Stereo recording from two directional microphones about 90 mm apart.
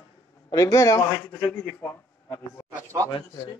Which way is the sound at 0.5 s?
40° left (ahead or behind).